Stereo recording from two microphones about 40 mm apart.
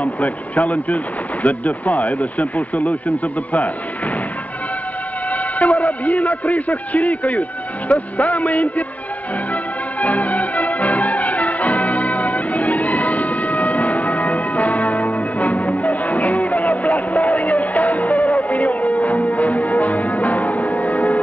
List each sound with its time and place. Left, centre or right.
0.0 s speech: left
5.3 s a man's voice: left
9.5 s music: left